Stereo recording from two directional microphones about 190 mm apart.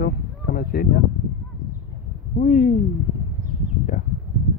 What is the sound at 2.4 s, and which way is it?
Speech, 40° left (ahead or behind).